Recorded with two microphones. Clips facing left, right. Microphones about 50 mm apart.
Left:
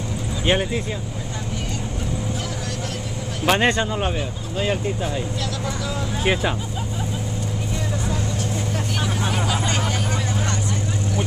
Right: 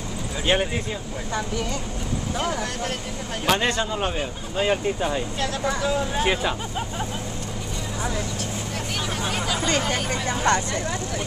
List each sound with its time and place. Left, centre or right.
0.5 s speech: centre
3.4 s speech: left
3.8 s speech: centre
4.6 s speech: centre
5.4 s speech: right
6.2 s speech: centre
9.3 s hubbub: left